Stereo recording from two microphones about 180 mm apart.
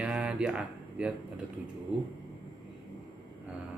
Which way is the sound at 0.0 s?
10° right (ahead or behind).